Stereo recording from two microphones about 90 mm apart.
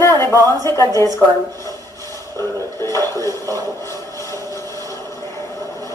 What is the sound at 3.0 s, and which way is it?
Speech, 40° right (ahead or behind).